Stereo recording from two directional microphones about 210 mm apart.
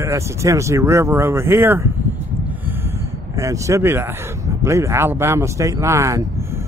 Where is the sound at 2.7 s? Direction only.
10° right (ahead or behind).